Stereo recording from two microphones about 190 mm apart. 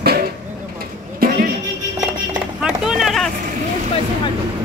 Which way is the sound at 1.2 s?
50° right (ahead or behind).